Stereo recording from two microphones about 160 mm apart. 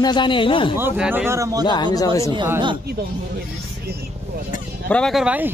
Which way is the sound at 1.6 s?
25° left (ahead or behind).